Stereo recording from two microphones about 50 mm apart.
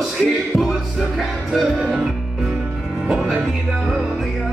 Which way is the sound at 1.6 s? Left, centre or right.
Centre.